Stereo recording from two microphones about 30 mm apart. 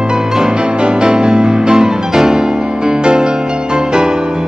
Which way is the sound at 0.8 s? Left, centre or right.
Right.